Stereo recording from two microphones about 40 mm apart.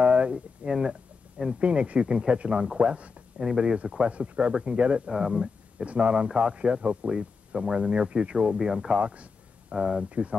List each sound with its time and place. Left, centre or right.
0.0 s a sound: right
0.3 s speech: centre
1.6 s speech: right
3.3 s speech: centre
5.9 s speech: right
9.0 s a sound: right
9.8 s speech: right